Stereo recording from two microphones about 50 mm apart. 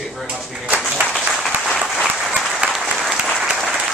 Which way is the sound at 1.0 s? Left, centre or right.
Right.